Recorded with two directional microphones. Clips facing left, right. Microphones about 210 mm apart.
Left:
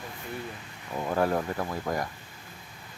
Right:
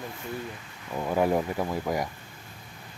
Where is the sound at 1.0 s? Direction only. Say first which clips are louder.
Right 2 dB; 10° right (ahead or behind).